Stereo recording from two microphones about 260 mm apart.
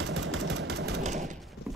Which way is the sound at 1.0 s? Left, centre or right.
Right.